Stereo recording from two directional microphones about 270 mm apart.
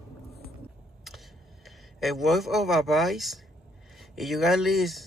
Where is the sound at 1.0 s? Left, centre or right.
Centre.